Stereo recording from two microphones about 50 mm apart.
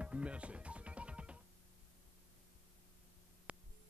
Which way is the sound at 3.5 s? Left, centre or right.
Right.